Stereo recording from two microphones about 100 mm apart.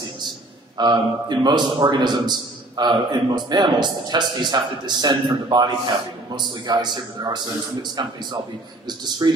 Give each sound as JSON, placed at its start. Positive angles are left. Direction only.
{"t": 0.7, "sound": "a man's voice", "side_deg": -45}